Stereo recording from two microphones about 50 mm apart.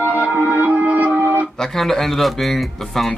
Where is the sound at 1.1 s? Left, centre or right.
Right.